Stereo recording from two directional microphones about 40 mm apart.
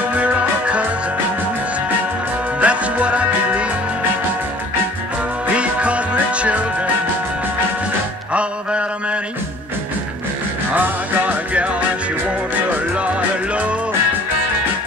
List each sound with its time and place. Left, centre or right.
0.1 s music: right
2.6 s music: right
5.5 s music: right
8.3 s mantra: right
10.7 s music: right